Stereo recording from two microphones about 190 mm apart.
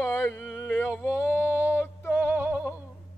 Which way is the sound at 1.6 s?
15° left (ahead or behind).